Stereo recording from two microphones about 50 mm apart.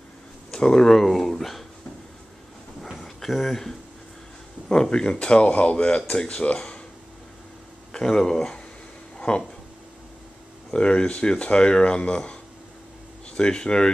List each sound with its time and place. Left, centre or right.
0.5 s speech: centre
2.8 s a sound: centre
4.6 s speech: centre
7.9 s speech: centre
10.7 s speech: centre
13.4 s speech: centre